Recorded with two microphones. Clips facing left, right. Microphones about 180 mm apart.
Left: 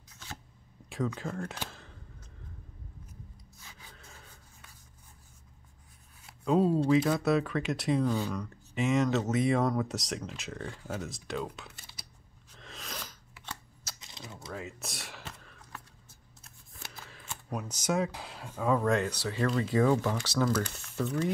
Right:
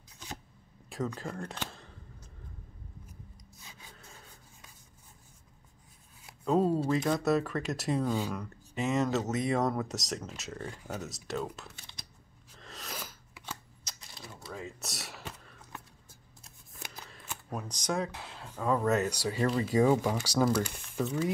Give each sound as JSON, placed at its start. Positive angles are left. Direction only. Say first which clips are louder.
{"t": 0.8, "sound": "speech", "louder": "left 2 dB", "side_deg": 0}
{"t": 6.4, "sound": "speech", "louder": "left 1 dB", "side_deg": 0}
{"t": 8.1, "sound": "speech", "louder": "left 1 dB", "side_deg": -10}
{"t": 12.5, "sound": "scissors", "louder": "right 1 dB", "side_deg": 0}
{"t": 14.1, "sound": "typing", "louder": "left 2 dB", "side_deg": 20}
{"t": 14.5, "sound": "a sound", "louder": "left 1 dB", "side_deg": 0}
{"t": 16.8, "sound": "shuffling cards", "louder": "right 1 dB", "side_deg": -15}
{"t": 17.1, "sound": "speech", "louder": "left 2 dB", "side_deg": 0}
{"t": 18.7, "sound": "speech", "louder": "even", "side_deg": -5}